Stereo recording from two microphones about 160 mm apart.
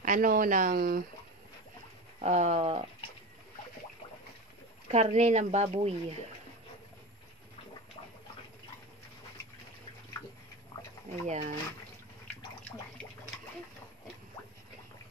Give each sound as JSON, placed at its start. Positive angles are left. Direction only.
{"t": 0.0, "sound": "speech", "side_deg": -55}
{"t": 2.2, "sound": "speech", "side_deg": -45}
{"t": 4.9, "sound": "speech", "side_deg": -45}
{"t": 11.2, "sound": "speech", "side_deg": -45}